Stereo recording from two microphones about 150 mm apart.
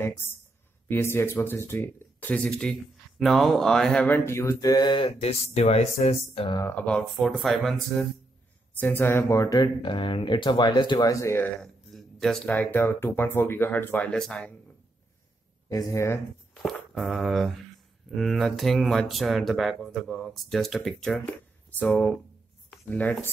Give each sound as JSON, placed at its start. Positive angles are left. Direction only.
{"t": 0.8, "sound": "speech", "side_deg": 15}
{"t": 6.5, "sound": "speech", "side_deg": 20}
{"t": 6.9, "sound": "speech", "side_deg": 0}
{"t": 8.7, "sound": "speech", "side_deg": 15}
{"t": 11.6, "sound": "speech", "side_deg": 5}
{"t": 15.7, "sound": "speech", "side_deg": 20}
{"t": 16.6, "sound": "speech", "side_deg": 0}